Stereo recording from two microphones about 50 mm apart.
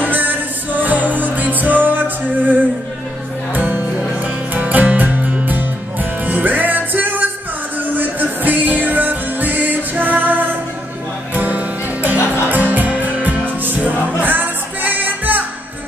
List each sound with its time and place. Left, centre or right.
0.0 s music: right